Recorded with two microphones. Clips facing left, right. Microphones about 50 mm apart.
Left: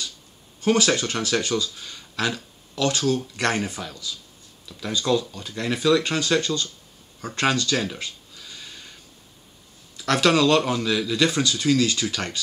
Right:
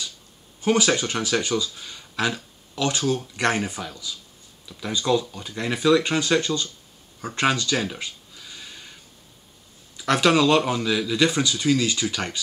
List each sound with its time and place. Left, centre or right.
0.6 s speech: centre
7.2 s a sound: centre
9.9 s speech: centre